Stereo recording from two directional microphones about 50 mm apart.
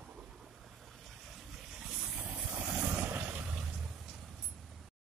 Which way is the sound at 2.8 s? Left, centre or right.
Right.